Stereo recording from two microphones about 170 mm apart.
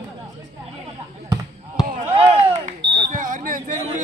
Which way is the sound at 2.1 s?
35° right (ahead or behind).